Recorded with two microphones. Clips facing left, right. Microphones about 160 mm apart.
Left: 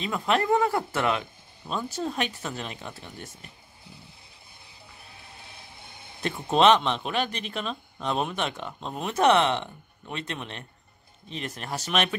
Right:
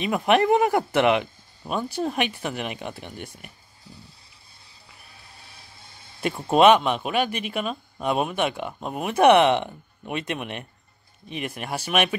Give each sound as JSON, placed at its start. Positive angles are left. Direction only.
{"t": 0.0, "sound": "speech", "side_deg": -20}
{"t": 6.2, "sound": "speech", "side_deg": -10}